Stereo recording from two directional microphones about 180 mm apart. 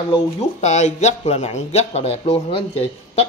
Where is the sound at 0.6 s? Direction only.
40° left (ahead or behind).